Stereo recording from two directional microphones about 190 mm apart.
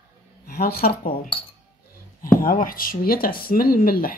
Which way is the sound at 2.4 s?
45° left (ahead or behind).